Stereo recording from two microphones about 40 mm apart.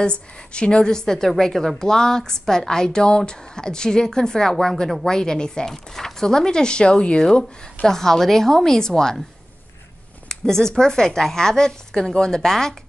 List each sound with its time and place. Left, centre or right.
0.0 s a woman's voice: left
7.8 s a woman's voice: centre
10.2 s a woman's voice: centre